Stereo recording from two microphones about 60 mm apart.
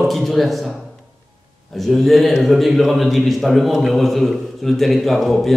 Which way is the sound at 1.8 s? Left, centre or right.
Centre.